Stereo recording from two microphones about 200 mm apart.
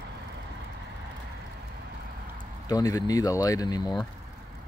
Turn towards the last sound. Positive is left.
turn(degrees=20)  # may be behind; listen again after turning